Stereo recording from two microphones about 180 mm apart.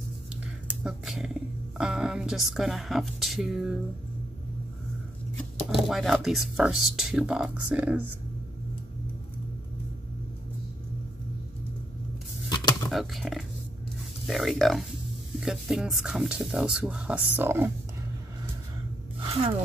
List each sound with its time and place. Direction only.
0.8 s speech: centre (ahead or behind)
5.6 s speech: centre (ahead or behind)
12.9 s speech: centre (ahead or behind)
19.1 s gasp: 30° right (ahead or behind)